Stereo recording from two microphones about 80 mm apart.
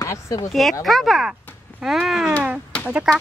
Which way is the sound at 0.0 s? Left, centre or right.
Left.